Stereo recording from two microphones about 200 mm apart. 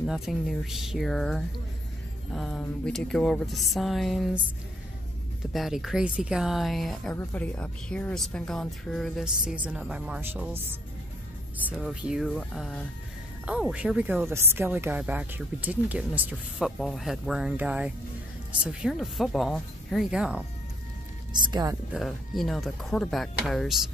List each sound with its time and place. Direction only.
0.0 s speech: centre (ahead or behind)
5.5 s speech: centre (ahead or behind)
21.3 s speech: 20° right (ahead or behind)
21.9 s speech: centre (ahead or behind)